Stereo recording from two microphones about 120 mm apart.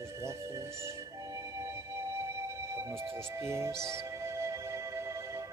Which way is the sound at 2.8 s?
20° right (ahead or behind).